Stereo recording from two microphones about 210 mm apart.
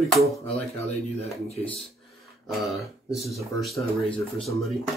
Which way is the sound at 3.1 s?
Centre (ahead or behind).